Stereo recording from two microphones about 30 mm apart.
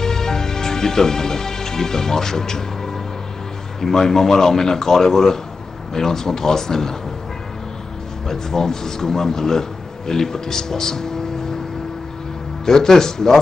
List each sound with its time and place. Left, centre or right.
0.0 s music: centre
3.8 s a man's voice: centre
8.3 s a man's voice: centre
12.6 s a man's voice: centre